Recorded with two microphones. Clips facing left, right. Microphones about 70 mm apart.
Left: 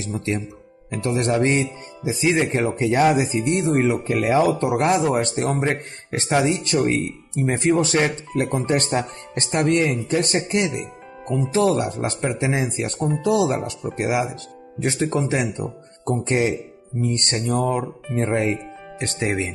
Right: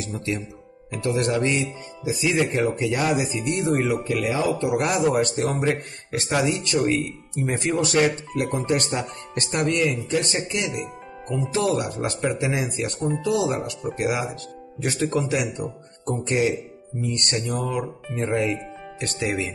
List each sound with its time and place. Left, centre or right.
0.0 s speech: left